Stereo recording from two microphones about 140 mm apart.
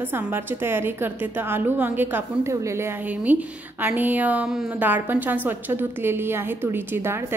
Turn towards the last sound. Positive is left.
turn(degrees=-15)  # may be behind; listen again after turning